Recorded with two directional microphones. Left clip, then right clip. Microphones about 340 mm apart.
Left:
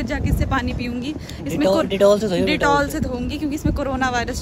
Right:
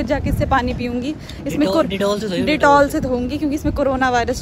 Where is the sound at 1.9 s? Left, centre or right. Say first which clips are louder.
Left 4 dB; left.